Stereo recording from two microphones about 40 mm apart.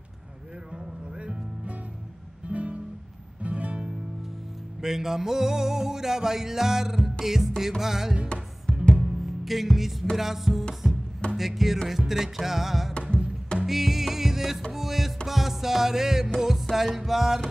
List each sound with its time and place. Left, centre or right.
2.5 s music: right
4.8 s music: centre
8.7 s music: left
9.2 s music: centre